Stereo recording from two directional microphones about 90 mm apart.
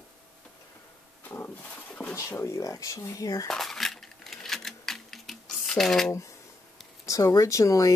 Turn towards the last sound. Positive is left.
turn(degrees=40)  # may be behind; listen again after turning